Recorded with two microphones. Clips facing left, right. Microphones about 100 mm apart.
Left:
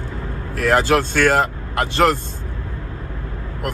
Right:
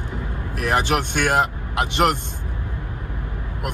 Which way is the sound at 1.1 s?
15° right (ahead or behind).